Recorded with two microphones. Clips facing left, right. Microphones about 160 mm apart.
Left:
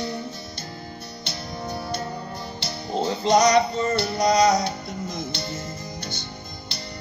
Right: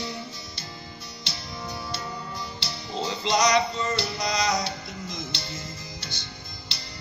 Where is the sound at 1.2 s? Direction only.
55° left (ahead or behind).